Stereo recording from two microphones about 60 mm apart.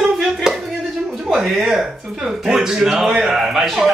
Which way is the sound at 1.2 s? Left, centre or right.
Centre.